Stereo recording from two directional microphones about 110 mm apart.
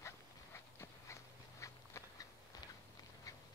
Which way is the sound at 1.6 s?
30° left (ahead or behind).